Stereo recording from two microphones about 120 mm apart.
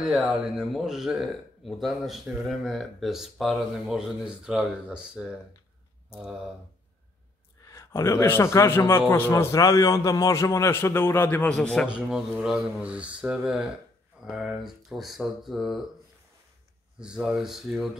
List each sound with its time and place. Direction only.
0.0 s speech: 5° right (ahead or behind)
7.6 s a man's voice: 25° left (ahead or behind)
11.5 s speech: 5° left (ahead or behind)
11.9 s speech: 5° right (ahead or behind)
17.0 s speech: 5° right (ahead or behind)